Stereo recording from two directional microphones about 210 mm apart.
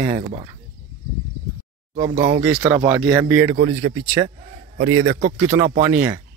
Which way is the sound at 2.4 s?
10° right (ahead or behind).